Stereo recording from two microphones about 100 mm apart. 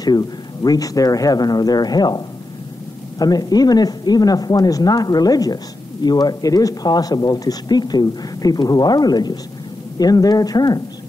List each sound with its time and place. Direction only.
0.0 s speech: 40° left (ahead or behind)